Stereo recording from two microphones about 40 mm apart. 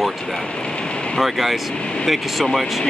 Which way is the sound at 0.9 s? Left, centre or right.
Left.